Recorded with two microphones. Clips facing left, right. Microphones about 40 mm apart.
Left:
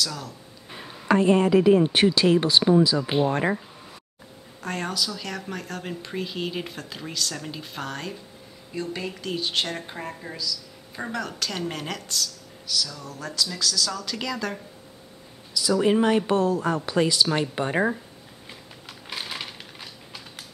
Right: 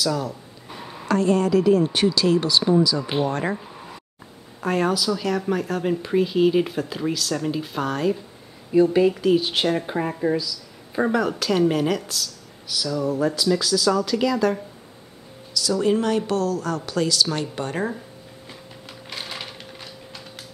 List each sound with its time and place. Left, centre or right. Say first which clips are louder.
0.0 s speech: right 7 dB; centre
1.0 s speech: left 1 dB; left
3.0 s speech: even; centre
4.6 s speech: right 7 dB; centre
8.7 s speech: right 14 dB; centre
9.8 s speech: right 12 dB; centre
14.0 s speech: right 9 dB; centre
15.5 s speech: even; centre
18.9 s a sound: even; centre